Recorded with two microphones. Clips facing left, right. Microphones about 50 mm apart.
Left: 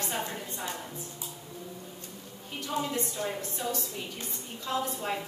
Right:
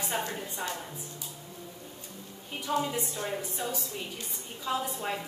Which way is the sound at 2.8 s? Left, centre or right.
Centre.